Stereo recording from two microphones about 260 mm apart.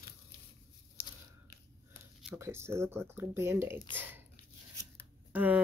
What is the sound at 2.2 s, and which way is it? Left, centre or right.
Speech, centre.